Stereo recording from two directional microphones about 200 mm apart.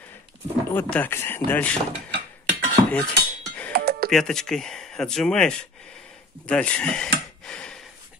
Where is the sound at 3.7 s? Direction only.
50° right (ahead or behind).